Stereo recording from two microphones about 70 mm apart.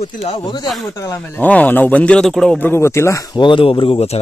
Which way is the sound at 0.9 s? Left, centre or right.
Left.